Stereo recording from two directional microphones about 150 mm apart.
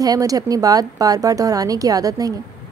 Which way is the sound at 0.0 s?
25° right (ahead or behind).